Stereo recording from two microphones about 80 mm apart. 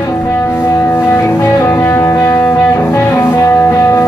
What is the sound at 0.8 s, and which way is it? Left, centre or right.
Music, left.